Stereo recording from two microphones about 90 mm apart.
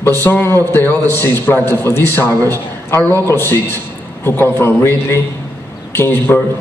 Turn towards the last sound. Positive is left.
turn(degrees=25)  # may be behind; listen again after turning